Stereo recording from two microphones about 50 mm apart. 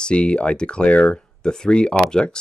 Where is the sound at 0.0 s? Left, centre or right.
Left.